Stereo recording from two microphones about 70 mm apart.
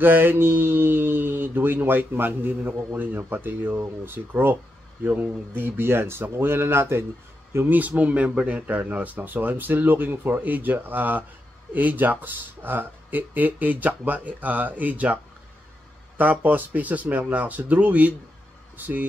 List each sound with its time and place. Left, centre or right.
0.0 s speech: right
7.9 s speech: centre
16.2 s speech: right